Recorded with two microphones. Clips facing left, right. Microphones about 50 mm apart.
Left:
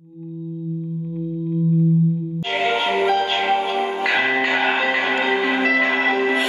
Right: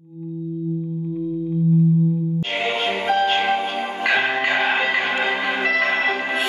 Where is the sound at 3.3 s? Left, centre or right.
Centre.